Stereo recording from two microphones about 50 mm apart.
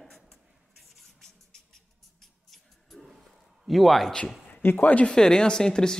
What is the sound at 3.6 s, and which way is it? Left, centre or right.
Speech, centre.